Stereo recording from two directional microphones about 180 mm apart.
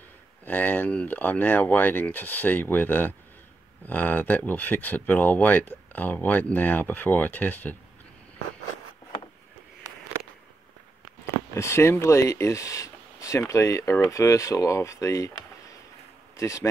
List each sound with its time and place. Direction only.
0.5 s speech: 10° left (ahead or behind)
11.5 s speech: 15° left (ahead or behind)
16.3 s a man's voice: 15° left (ahead or behind)